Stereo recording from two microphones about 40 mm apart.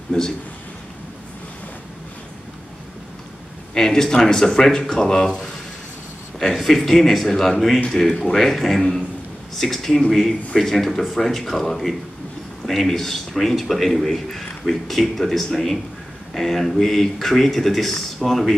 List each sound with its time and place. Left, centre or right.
3.7 s a man's voice: centre